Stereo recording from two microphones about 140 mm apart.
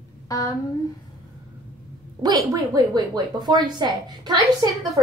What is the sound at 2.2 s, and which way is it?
A woman's voice, 25° right (ahead or behind).